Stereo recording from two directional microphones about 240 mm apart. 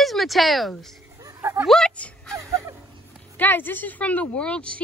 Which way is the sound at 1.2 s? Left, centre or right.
Centre.